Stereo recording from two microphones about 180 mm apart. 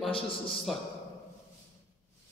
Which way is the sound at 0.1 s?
30° left (ahead or behind).